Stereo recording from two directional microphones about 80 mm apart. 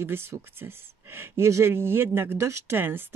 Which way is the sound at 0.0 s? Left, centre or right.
Right.